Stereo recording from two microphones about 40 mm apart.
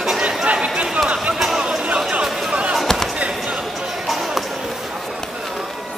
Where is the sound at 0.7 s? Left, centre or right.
Right.